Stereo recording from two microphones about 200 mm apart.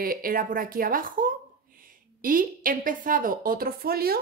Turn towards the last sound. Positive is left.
turn(degrees=-50)  # may be behind; listen again after turning